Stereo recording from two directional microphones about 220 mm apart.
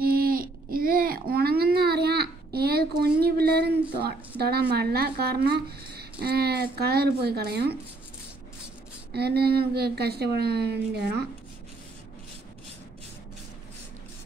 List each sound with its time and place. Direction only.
0.0 s a sound: 45° right (ahead or behind)
3.0 s a woman's voice: 45° right (ahead or behind)
9.1 s a woman's voice: 45° right (ahead or behind)